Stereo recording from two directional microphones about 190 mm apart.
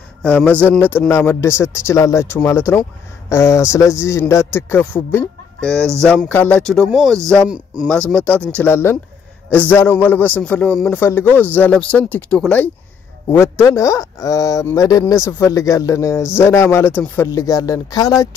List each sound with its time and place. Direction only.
0.2 s speech: 5° left (ahead or behind)